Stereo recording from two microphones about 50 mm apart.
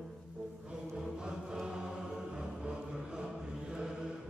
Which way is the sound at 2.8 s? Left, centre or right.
Centre.